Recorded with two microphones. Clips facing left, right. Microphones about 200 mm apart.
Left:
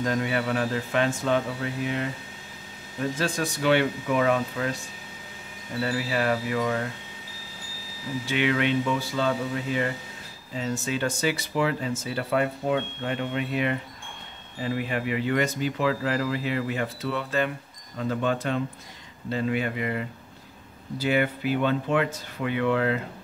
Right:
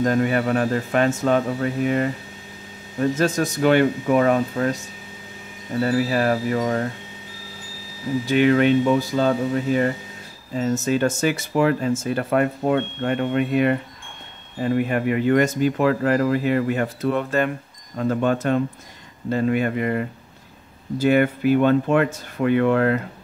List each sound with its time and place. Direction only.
0.0 s speech: 45° right (ahead or behind)
5.8 s speech: 45° right (ahead or behind)
8.3 s speech: 40° right (ahead or behind)